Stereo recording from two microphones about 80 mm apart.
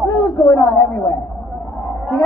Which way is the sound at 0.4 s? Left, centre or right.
Left.